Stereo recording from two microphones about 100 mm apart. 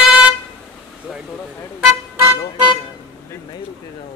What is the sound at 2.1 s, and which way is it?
Vehicle, 25° right (ahead or behind).